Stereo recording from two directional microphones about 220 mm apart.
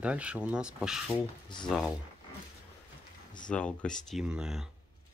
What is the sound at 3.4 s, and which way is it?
Speech, 5° left (ahead or behind).